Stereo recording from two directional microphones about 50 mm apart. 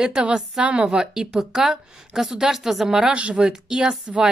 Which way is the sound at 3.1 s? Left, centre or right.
Right.